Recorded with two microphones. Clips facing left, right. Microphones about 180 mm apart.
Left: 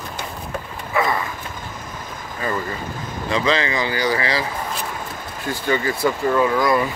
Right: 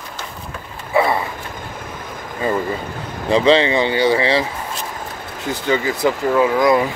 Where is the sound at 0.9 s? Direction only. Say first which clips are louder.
Right 4 dB; 30° right (ahead or behind).